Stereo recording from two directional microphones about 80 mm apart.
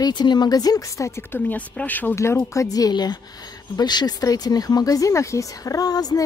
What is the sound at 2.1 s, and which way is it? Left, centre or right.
Speech, left.